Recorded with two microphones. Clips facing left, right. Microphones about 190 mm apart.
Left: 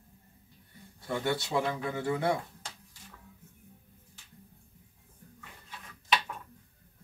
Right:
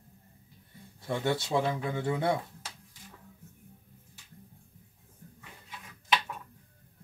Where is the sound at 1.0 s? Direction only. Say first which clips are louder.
Right 1 dB; 25° right (ahead or behind).